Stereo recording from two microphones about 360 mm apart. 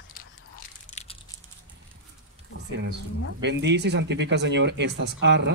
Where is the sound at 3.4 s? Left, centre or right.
Right.